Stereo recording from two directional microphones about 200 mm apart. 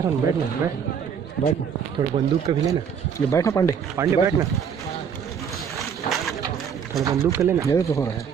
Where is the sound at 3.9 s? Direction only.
15° right (ahead or behind).